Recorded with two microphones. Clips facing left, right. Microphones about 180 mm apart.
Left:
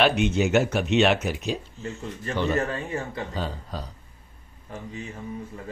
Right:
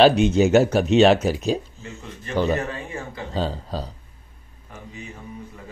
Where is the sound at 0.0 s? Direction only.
35° right (ahead or behind).